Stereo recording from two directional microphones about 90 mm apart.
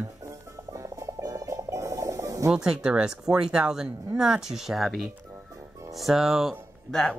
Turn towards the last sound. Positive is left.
turn(degrees=5)  # may be behind; listen again after turning